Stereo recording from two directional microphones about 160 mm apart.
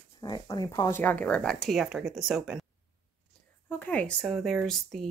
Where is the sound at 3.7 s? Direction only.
10° left (ahead or behind).